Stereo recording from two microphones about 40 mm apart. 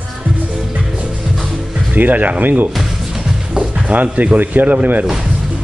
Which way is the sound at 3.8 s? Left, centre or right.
Right.